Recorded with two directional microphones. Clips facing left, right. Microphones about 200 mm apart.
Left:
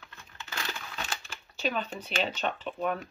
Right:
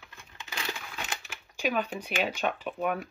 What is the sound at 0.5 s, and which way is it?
Speech, 15° right (ahead or behind).